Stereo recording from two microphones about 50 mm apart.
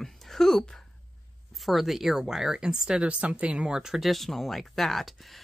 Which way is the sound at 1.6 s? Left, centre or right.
Centre.